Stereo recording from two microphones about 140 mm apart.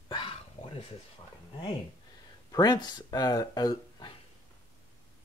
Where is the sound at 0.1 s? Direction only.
40° left (ahead or behind).